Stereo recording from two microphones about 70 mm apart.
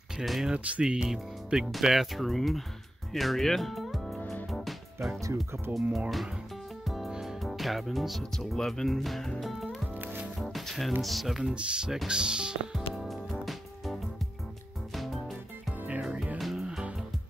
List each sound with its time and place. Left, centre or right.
0.2 s speech: centre
0.5 s speech: centre
3.1 s music: centre
5.2 s speech: right
5.9 s speech: centre
6.8 s music: centre
8.2 s speech: centre
9.4 s music: centre
11.0 s speech: centre
12.9 s music: centre
15.9 s music: centre
16.3 s music: centre
16.6 s music: centre